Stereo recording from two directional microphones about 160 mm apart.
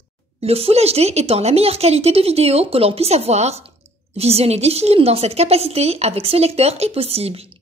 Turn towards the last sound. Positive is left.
turn(degrees=-40)  # may be behind; listen again after turning